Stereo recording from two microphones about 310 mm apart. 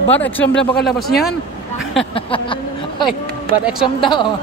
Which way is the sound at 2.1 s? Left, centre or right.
Centre.